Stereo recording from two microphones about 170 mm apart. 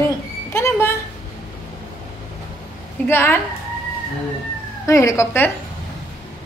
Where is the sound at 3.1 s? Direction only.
15° left (ahead or behind).